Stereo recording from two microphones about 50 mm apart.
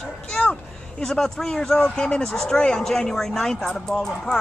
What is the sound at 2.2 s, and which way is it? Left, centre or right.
Speech, centre.